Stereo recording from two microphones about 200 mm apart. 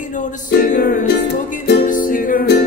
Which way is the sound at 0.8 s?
40° left (ahead or behind).